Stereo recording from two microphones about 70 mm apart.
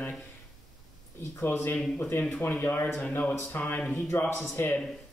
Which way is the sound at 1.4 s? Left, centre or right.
Left.